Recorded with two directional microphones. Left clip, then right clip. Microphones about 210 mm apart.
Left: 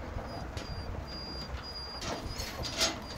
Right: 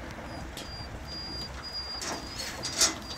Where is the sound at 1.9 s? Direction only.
50° left (ahead or behind).